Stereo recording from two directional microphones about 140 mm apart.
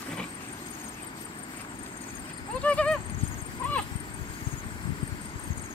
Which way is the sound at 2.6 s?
10° left (ahead or behind).